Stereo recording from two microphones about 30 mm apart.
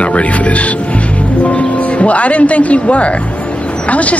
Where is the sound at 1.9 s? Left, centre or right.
Left.